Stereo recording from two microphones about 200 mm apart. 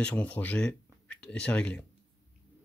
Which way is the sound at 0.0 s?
5° left (ahead or behind).